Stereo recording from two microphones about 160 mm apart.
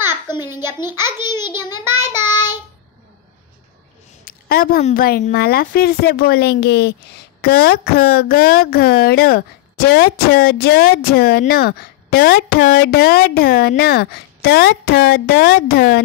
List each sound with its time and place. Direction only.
0.3 s a sound: 25° left (ahead or behind)
0.6 s a child's voice: 15° right (ahead or behind)
1.5 s a child's voice: 25° left (ahead or behind)
4.2 s a sound: 65° left (ahead or behind)
4.9 s speech: 70° left (ahead or behind); by 6.9 s 90° left
7.4 s speech: 75° left (ahead or behind)